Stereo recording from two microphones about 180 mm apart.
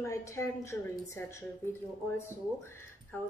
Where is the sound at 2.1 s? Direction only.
15° left (ahead or behind).